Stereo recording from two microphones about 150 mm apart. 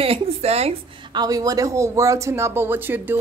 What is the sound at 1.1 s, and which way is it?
Speech, 25° right (ahead or behind).